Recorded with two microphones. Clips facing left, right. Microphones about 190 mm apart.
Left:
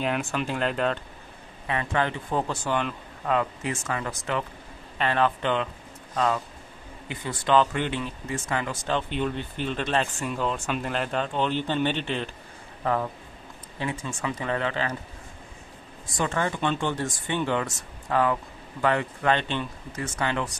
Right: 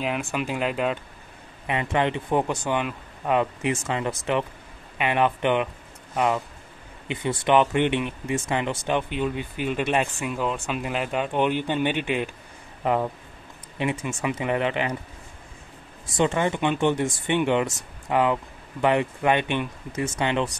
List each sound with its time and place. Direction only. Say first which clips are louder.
0.0 s speech: even; 5° right (ahead or behind)
1.7 s speech: right 3 dB; 20° right (ahead or behind)
3.3 s speech: right 3 dB; 20° right (ahead or behind)
9.1 s speech: right 1 dB; 5° right (ahead or behind)
16.1 s speech: right 5 dB; 20° right (ahead or behind)